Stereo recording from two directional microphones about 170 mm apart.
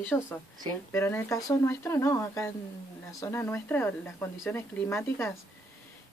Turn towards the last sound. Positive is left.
turn(degrees=15)  # may be behind; listen again after turning